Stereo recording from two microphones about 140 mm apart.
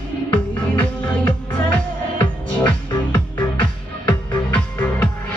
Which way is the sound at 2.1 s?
35° left (ahead or behind).